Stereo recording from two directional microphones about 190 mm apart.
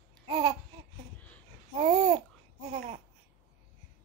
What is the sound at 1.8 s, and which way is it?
Babbling, 35° right (ahead or behind).